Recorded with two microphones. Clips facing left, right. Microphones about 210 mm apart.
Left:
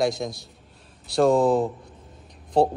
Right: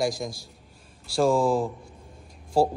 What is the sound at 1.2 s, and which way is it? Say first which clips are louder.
Speech: left 3 dB; 20° left (ahead or behind).